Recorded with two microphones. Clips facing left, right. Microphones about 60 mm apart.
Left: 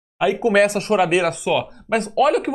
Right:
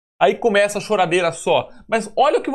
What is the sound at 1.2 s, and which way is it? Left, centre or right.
Speech, centre.